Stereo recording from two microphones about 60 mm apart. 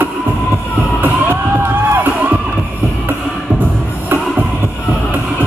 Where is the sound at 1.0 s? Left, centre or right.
Right.